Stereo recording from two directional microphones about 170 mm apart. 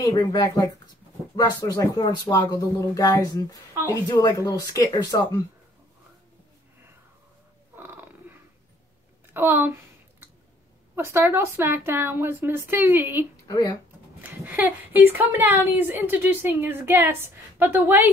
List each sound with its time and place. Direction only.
0.0 s speech: 20° left (ahead or behind)
7.7 s purr: 10° right (ahead or behind)
9.3 s speech: 10° right (ahead or behind)
11.0 s a woman's voice: 15° right (ahead or behind)
13.5 s speech: 20° left (ahead or behind)
14.2 s a woman's voice: 10° right (ahead or behind)